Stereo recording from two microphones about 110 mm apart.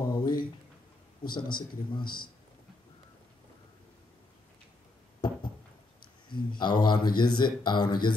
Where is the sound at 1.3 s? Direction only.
45° left (ahead or behind).